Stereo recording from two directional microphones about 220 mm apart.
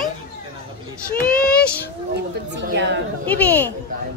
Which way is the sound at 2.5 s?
50° right (ahead or behind).